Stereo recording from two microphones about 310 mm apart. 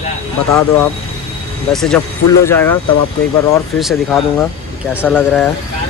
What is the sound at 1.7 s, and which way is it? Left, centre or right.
Speech, centre.